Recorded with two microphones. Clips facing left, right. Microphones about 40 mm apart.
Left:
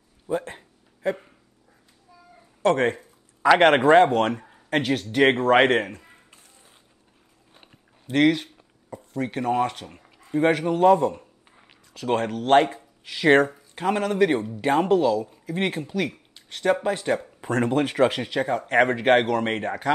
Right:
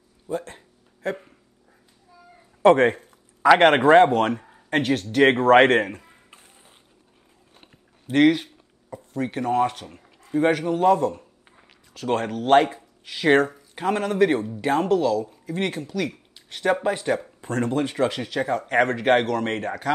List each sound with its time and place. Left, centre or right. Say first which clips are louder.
0.3 s speech: left 2 dB; centre
1.0 s speech: left 2 dB; centre
2.6 s speech: right 5 dB; centre
8.1 s speech: right 2 dB; centre
16.4 s speech: even; centre
17.4 s speech: left 2 dB; left
18.3 s speech: even; centre